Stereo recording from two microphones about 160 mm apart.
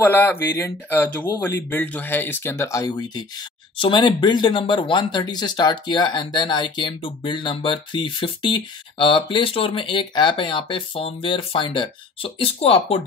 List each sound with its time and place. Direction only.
0.0 s speech: 10° left (ahead or behind); by 13.0 s 35° left (ahead or behind)